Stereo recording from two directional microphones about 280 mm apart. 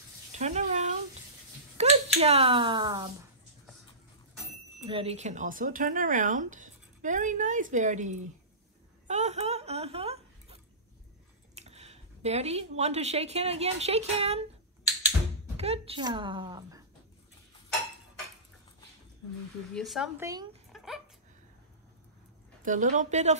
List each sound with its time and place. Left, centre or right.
0.3 s a sound: right
1.8 s speech: right
4.8 s speech: right
9.0 s a sound: right
11.5 s speech: right
15.5 s a woman's voice: right
19.7 s speech: centre
20.7 s dog: centre
22.6 s speech: right